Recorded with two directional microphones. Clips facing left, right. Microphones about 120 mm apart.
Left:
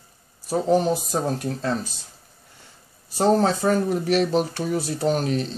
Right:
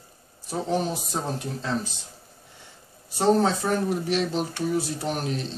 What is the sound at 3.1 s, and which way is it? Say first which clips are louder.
Speech: left 2 dB; 40° left (ahead or behind).